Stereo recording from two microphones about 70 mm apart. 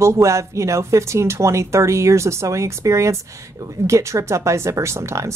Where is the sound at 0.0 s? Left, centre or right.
Right.